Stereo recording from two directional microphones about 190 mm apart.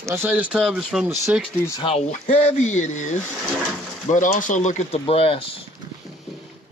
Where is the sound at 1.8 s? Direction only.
30° left (ahead or behind).